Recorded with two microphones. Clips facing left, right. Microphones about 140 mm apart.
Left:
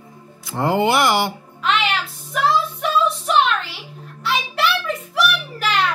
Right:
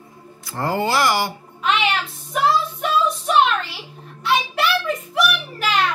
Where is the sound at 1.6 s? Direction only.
Centre (ahead or behind).